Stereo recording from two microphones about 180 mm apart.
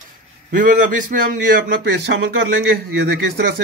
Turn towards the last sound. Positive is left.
turn(degrees=-75)  # may be behind; listen again after turning